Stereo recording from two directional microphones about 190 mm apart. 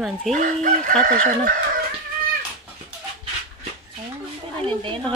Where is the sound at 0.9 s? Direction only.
5° left (ahead or behind).